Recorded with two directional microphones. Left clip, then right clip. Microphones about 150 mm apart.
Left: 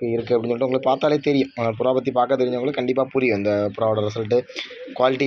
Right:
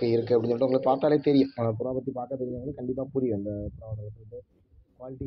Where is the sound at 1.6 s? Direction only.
55° left (ahead or behind).